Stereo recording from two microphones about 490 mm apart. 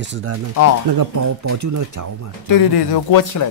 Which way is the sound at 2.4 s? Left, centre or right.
Left.